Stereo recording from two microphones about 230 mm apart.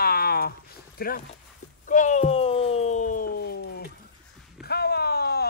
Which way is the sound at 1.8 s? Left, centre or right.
Left.